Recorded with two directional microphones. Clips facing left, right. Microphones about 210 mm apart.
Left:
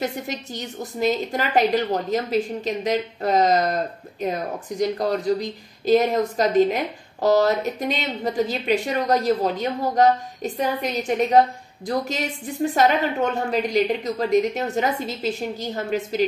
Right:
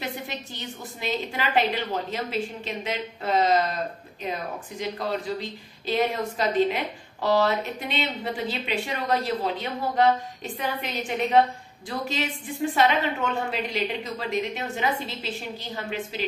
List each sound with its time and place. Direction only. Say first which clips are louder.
0.0 s a woman's voice: left 6 dB; 45° left (ahead or behind)